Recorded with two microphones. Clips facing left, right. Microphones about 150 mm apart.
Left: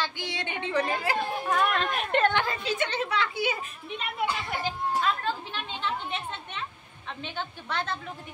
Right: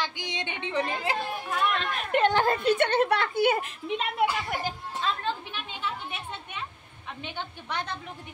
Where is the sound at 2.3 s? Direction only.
50° right (ahead or behind); by 4.2 s 85° right.